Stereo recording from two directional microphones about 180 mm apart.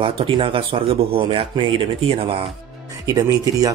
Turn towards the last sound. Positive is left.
turn(degrees=-20)  # may be behind; listen again after turning